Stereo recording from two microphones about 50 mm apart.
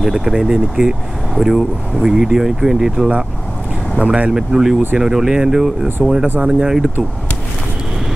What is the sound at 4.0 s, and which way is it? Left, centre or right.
Speech, right.